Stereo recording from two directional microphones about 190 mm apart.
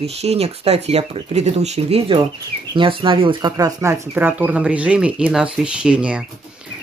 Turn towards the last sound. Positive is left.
turn(degrees=-5)  # may be behind; listen again after turning